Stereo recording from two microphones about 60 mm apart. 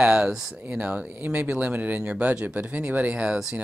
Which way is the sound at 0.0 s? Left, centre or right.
Centre.